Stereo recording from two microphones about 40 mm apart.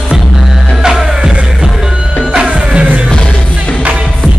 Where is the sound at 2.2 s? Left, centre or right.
Right.